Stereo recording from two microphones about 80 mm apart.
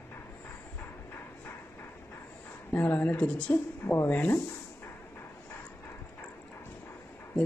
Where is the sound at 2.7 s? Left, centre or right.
Left.